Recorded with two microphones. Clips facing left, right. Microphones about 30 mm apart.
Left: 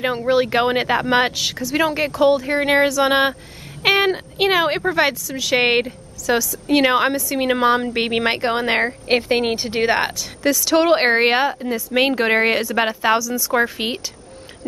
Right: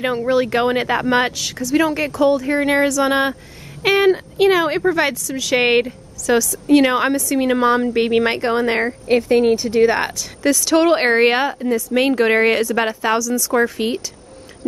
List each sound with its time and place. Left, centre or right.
0.3 s a woman's voice: centre
9.0 s a woman's voice: left
9.9 s a woman's voice: centre